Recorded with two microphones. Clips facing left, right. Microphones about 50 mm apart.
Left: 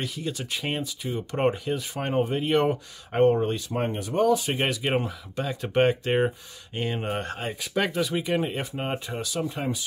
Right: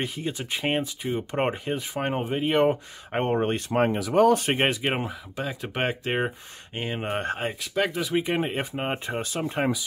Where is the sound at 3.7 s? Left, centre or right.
Right.